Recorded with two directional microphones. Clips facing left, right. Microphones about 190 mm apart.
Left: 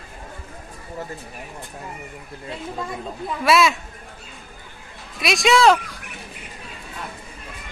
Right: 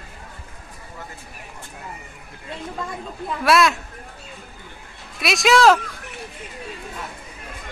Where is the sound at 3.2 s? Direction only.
Centre (ahead or behind).